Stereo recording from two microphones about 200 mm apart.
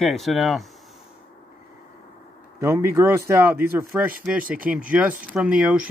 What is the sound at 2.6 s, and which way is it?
Speech, 15° right (ahead or behind).